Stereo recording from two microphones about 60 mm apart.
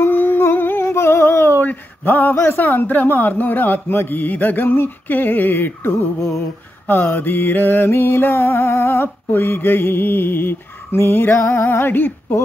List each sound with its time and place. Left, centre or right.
0.0 s humming: left
1.6 s a sound: left
2.6 s mantra: left